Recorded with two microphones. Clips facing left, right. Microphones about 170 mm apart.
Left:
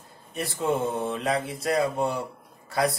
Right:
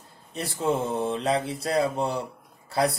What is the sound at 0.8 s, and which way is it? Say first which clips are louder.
Speech: right 1 dB; 30° right (ahead or behind).